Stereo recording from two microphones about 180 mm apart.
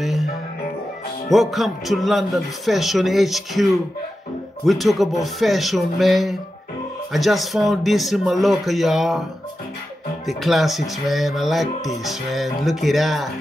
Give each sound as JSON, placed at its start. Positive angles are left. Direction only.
{"t": 0.0, "sound": "music", "side_deg": 0}
{"t": 1.3, "sound": "speech", "side_deg": 0}
{"t": 4.6, "sound": "speech", "side_deg": 0}
{"t": 10.2, "sound": "speech", "side_deg": 0}